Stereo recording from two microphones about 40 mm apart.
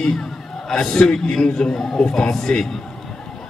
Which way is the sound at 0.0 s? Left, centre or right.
Centre.